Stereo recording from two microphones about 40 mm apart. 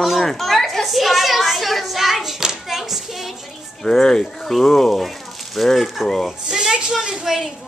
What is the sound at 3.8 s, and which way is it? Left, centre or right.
Speech, centre.